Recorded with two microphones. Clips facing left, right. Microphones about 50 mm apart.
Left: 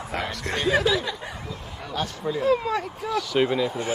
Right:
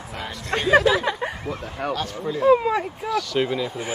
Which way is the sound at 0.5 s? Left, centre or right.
Right.